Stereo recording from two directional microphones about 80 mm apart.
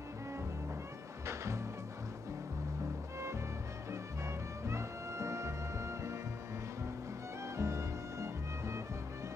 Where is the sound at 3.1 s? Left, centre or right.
Right.